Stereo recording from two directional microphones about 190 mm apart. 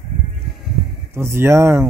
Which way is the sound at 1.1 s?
15° right (ahead or behind).